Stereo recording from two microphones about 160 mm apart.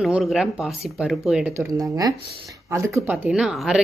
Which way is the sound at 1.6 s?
20° right (ahead or behind).